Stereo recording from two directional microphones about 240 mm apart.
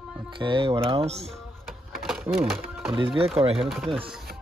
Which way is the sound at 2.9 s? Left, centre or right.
Right.